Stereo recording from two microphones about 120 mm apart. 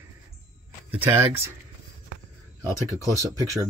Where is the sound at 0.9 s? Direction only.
15° right (ahead or behind).